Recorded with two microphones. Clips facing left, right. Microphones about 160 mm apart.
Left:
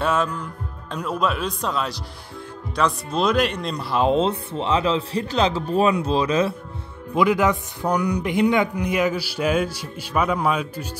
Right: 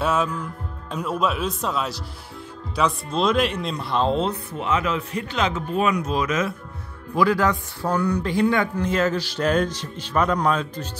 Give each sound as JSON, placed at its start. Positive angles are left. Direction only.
{"t": 0.0, "sound": "music", "side_deg": -5}
{"t": 0.9, "sound": "speech", "side_deg": -5}
{"t": 4.0, "sound": "speech", "side_deg": 20}
{"t": 7.2, "sound": "speech", "side_deg": 20}